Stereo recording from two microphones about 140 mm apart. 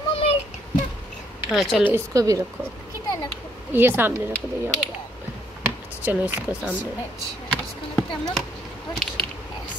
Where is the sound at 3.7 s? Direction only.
15° right (ahead or behind).